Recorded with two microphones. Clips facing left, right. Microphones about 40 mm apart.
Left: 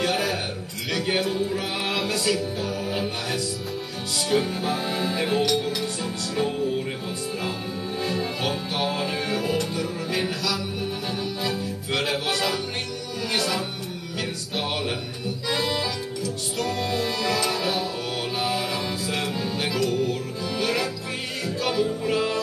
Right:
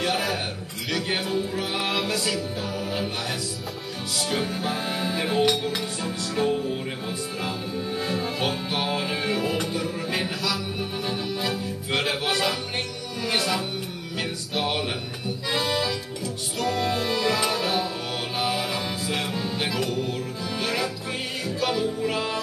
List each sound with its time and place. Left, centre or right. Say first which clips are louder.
0.0 s music: left 1 dB; centre
5.4 s music: right 1 dB; right
8.0 s music: left 1 dB; centre
10.2 s speech: left 1 dB; centre
11.4 s music: even; centre
15.5 s accordion: right 1 dB; centre
16.5 s music: right 2 dB; centre